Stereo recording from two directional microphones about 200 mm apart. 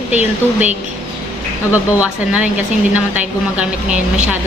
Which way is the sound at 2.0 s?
5° right (ahead or behind).